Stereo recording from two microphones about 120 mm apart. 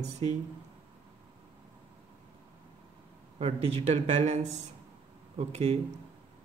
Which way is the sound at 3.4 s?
60° right (ahead or behind).